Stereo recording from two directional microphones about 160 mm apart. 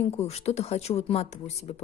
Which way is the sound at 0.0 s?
40° left (ahead or behind).